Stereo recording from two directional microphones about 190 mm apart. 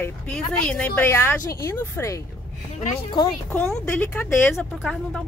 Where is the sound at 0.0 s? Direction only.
5° left (ahead or behind); by 3.5 s 20° left (ahead or behind).